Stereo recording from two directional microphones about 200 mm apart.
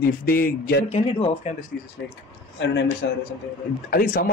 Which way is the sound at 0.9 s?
30° left (ahead or behind).